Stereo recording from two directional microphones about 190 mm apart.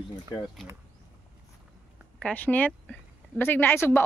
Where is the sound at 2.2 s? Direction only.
5° left (ahead or behind).